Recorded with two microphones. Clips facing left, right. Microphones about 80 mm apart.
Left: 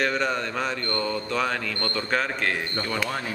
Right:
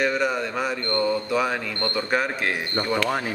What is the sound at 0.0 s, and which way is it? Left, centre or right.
A man's voice, centre.